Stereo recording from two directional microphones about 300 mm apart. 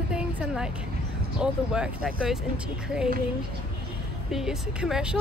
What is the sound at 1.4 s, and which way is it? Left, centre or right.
Speech, centre.